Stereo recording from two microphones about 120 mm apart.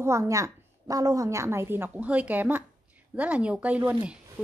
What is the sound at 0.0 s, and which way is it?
A woman's voice, 25° right (ahead or behind).